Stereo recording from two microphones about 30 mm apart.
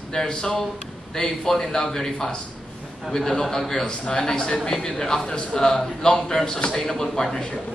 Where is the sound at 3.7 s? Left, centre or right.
Left.